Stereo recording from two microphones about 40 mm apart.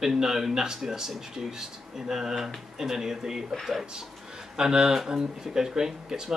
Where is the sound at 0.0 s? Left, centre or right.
Centre.